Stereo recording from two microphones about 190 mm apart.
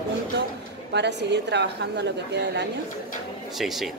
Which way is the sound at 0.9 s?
65° right (ahead or behind).